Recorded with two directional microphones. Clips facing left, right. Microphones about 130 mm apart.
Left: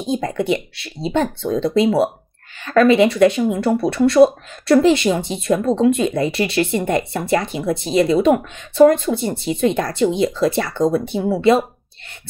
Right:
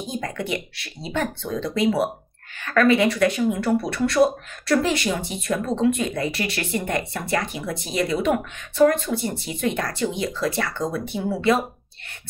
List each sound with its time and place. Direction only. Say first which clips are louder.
0.1 s speech: left 9 dB; 25° left (ahead or behind)